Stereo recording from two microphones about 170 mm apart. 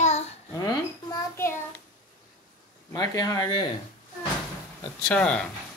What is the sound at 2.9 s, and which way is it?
Speech, 20° left (ahead or behind).